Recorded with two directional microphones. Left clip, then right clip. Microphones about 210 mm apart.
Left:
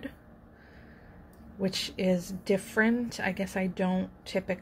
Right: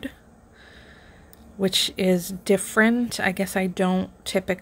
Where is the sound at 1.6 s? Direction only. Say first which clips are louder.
Right 9 dB; 35° right (ahead or behind).